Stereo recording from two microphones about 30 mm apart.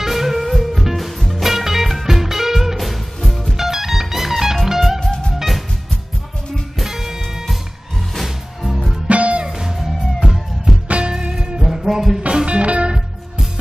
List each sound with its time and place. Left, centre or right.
0.0 s music: centre
3.2 s music: centre
3.5 s music: centre
6.8 s music: centre
8.1 s music: centre
9.0 s music: right
9.5 s music: right
9.8 s music: centre
10.7 s music: right
11.6 s music: centre
12.4 s music: right